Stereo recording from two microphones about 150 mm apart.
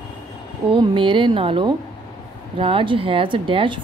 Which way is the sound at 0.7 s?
35° right (ahead or behind).